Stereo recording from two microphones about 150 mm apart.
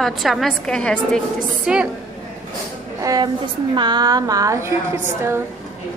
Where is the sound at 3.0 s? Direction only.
25° right (ahead or behind).